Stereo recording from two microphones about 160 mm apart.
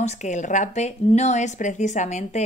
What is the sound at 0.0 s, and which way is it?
A woman's voice, 50° left (ahead or behind).